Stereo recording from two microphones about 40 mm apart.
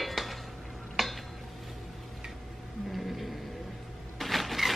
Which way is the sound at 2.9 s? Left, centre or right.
Centre.